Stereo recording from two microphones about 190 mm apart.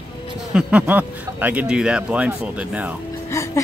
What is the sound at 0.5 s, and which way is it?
Speech, 5° right (ahead or behind).